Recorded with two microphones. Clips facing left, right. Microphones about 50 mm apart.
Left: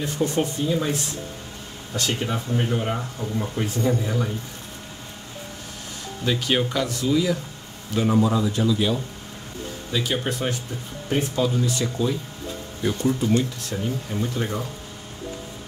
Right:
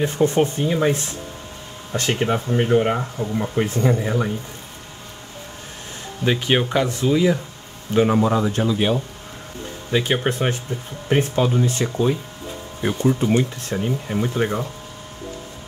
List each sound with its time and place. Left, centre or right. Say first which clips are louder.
0.0 s speech: right 6 dB; right
3.2 s speech: right 5 dB; right
6.2 s speech: right 3 dB; right